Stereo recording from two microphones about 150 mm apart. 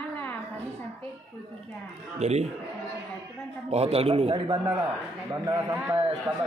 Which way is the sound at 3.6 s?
45° right (ahead or behind).